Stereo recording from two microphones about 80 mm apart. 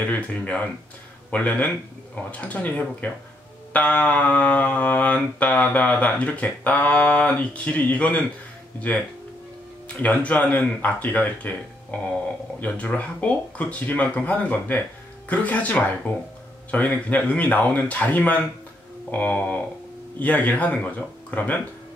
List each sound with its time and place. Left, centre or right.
0.0 s speech: centre
1.3 s mantra: centre
2.1 s speech: centre
3.7 s mantra: centre
9.9 s mantra: centre